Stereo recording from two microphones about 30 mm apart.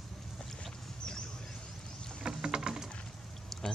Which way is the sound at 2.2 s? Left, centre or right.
Right.